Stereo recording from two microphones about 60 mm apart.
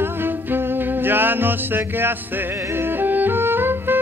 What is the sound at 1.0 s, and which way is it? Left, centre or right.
Music, right.